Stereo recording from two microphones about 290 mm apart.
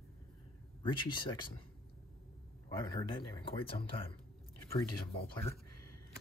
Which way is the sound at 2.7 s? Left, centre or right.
Centre.